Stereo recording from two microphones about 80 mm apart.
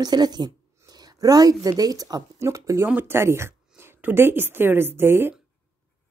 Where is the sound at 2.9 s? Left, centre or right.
Right.